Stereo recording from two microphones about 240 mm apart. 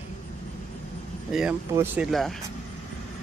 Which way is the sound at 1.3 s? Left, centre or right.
Centre.